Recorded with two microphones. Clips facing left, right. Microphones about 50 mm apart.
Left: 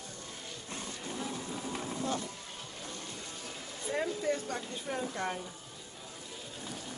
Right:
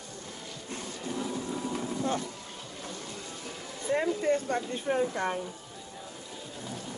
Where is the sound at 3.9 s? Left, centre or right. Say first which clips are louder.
Right 6 dB; right.